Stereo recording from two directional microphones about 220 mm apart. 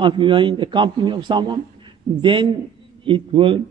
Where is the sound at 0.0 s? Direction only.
20° right (ahead or behind).